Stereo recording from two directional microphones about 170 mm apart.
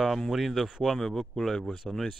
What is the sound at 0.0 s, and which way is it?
Speech, centre (ahead or behind).